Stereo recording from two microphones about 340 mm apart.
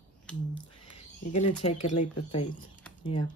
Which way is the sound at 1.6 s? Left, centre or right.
Centre.